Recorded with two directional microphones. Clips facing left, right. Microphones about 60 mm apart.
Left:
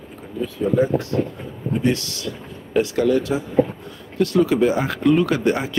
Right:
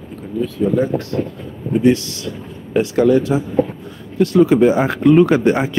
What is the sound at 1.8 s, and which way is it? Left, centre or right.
Speech, right.